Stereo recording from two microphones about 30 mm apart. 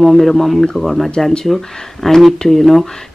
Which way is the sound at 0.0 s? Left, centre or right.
Centre.